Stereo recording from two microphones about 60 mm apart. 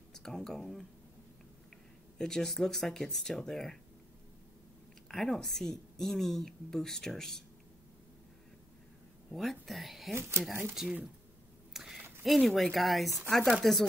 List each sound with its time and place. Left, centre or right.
0.1 s speech: centre
2.1 s a woman's voice: centre
5.0 s a woman's voice: centre
9.3 s a woman's voice: centre
10.1 s speech: right
10.7 s speech: centre
11.7 s a sound: centre
12.3 s a woman's voice: centre